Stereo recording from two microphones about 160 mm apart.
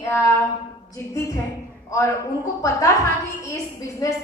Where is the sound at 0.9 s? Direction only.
20° left (ahead or behind).